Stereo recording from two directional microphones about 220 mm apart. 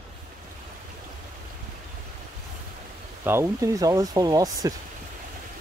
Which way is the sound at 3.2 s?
10° right (ahead or behind).